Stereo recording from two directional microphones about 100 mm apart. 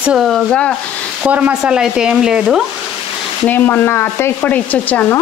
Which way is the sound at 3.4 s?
20° left (ahead or behind).